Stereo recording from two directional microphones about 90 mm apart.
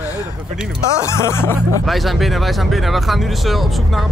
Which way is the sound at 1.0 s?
30° left (ahead or behind).